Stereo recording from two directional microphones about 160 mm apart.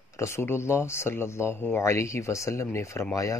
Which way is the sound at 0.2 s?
15° left (ahead or behind).